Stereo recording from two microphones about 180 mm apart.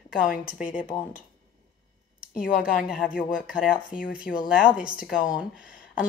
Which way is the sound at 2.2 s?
55° left (ahead or behind).